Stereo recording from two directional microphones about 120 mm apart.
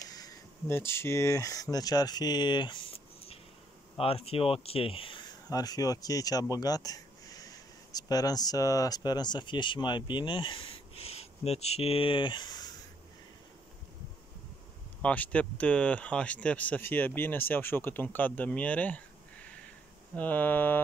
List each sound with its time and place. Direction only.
0.0 s a sound: 30° left (ahead or behind)
0.7 s speech: 20° left (ahead or behind); by 2.8 s 40° left (ahead or behind)
4.0 s speech: 55° left (ahead or behind); by 12.7 s 35° left (ahead or behind)
15.0 s speech: 10° left (ahead or behind)
20.2 s speech: 15° left (ahead or behind)